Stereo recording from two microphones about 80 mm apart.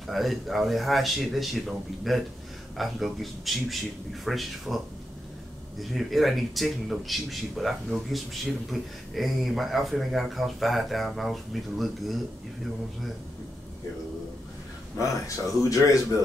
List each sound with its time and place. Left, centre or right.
0.0 s a man's voice: centre
5.8 s a man's voice: centre
15.0 s speech: left